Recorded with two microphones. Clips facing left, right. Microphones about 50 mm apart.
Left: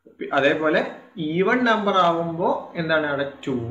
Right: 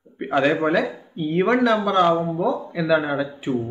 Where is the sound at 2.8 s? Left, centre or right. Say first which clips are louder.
Right 3 dB; right.